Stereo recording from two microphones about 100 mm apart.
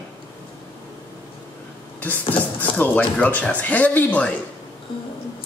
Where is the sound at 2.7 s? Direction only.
15° left (ahead or behind).